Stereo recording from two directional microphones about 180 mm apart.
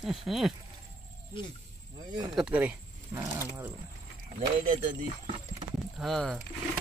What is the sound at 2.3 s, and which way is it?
Speech, 5° right (ahead or behind).